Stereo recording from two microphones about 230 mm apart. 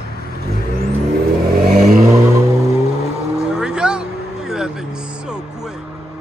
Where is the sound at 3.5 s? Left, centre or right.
Centre.